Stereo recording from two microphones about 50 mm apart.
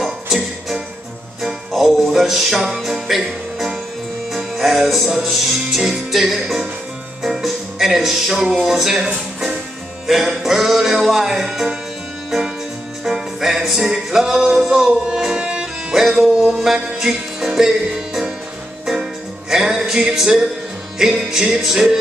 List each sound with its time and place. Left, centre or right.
0.0 s music: centre
9.0 s music: centre
10.0 s music: centre
13.0 s music: centre
19.5 s music: centre